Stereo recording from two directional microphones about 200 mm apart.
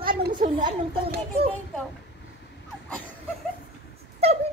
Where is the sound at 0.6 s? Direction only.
25° right (ahead or behind).